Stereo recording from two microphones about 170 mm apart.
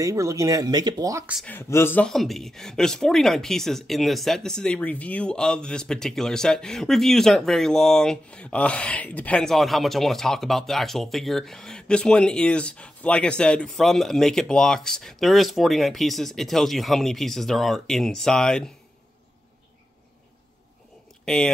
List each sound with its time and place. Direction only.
0.0 s speech: 20° right (ahead or behind)
1.4 s speech: 15° left (ahead or behind)